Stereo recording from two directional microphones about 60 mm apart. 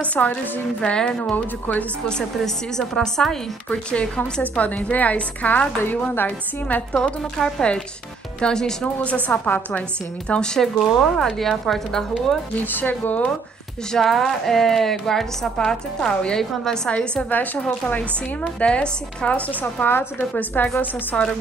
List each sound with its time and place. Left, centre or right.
0.0 s a woman's voice: left
1.3 s a woman's voice: left
2.3 s a woman's voice: centre
3.7 s a woman's voice: centre
6.9 s a woman's voice: centre
9.0 s a woman's voice: left; by 12.0 s centre
12.7 s speech: left
13.9 s a woman's voice: centre; by 21.2 s left